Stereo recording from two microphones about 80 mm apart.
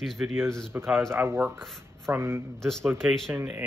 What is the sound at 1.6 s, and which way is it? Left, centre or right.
Speech, centre.